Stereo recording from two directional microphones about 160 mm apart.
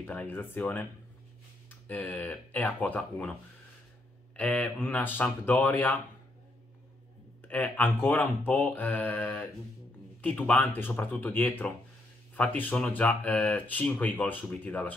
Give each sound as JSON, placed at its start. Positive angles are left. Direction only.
{"t": 0.0, "sound": "speech", "side_deg": 10}
{"t": 1.9, "sound": "speech", "side_deg": 10}
{"t": 4.4, "sound": "speech", "side_deg": 10}
{"t": 7.4, "sound": "speech", "side_deg": 10}